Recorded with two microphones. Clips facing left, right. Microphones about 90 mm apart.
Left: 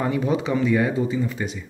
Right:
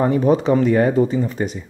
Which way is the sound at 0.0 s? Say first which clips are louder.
Right 7 dB; 40° right (ahead or behind).